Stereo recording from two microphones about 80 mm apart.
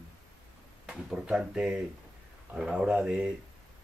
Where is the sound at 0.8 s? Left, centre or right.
Centre.